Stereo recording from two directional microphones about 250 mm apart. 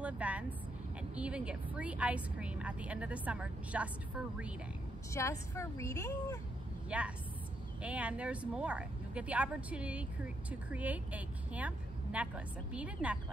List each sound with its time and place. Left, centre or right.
0.0 s a woman's voice: centre
5.1 s a woman's voice: centre
6.9 s a woman's voice: centre